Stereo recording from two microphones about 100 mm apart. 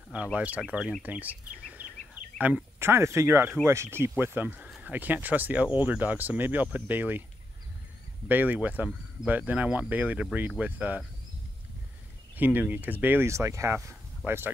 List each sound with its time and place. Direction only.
0.1 s speech: 10° right (ahead or behind)
2.8 s speech: 25° right (ahead or behind)
8.3 s speech: 15° right (ahead or behind)
12.4 s speech: 15° right (ahead or behind)